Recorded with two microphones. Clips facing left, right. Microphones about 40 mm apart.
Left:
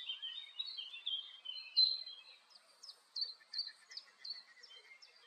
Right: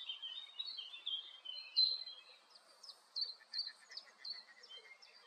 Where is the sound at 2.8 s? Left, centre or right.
Centre.